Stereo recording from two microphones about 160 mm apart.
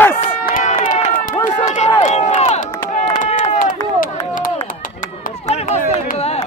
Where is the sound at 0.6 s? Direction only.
50° left (ahead or behind).